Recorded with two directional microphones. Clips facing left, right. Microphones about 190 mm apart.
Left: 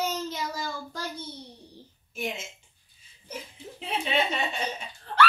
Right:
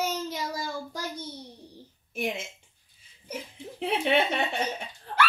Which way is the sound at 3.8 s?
60° right (ahead or behind).